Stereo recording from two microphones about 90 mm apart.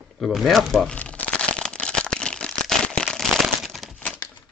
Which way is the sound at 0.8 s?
15° left (ahead or behind).